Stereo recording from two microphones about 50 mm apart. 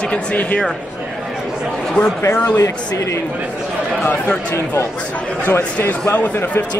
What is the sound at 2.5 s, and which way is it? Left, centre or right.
Speech, left.